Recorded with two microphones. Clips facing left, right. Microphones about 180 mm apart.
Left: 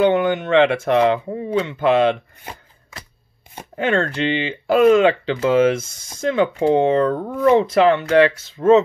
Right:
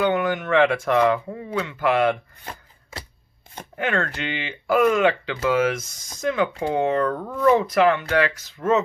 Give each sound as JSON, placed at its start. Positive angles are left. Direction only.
{"t": 0.0, "sound": "speech", "side_deg": 25}
{"t": 3.7, "sound": "speech", "side_deg": 30}